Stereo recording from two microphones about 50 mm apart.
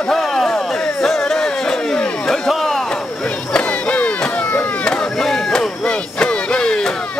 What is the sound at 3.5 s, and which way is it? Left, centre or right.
Chop, left.